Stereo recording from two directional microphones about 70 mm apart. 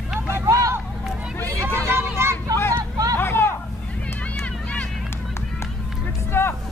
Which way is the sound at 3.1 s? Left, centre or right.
Left.